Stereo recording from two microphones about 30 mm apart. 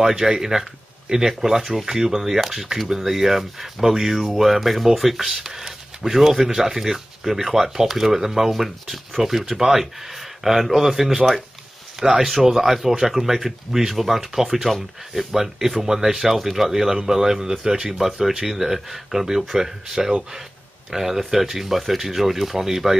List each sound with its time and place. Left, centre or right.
0.0 s speech: centre
12.0 s speech: centre
14.7 s speech: left
15.3 s speech: centre
17.8 s speech: centre